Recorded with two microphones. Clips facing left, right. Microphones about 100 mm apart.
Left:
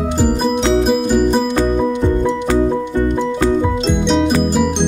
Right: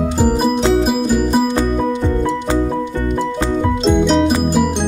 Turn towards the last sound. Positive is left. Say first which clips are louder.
# right 2 dB
turn(degrees=-5)  # may be behind; listen again after turning